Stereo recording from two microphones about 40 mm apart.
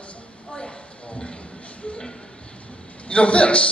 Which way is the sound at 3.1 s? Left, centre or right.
Left.